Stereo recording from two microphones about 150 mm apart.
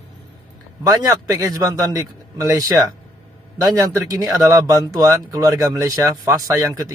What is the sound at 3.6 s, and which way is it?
Speech, 25° right (ahead or behind).